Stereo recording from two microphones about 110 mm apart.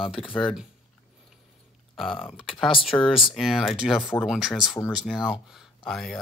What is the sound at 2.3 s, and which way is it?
Speech, 55° left (ahead or behind).